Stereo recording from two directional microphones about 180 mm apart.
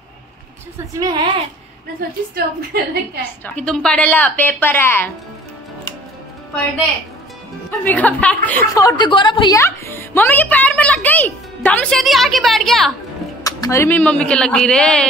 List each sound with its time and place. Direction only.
0.9 s speech: 25° right (ahead or behind)
2.3 s a woman's voice: 60° right (ahead or behind)
3.4 s a woman's voice: 5° left (ahead or behind)
7.8 s a woman's voice: 10° left (ahead or behind)
8.7 s a woman's voice: 20° left (ahead or behind); by 12.9 s centre (ahead or behind)
13.4 s a woman's voice: 20° left (ahead or behind)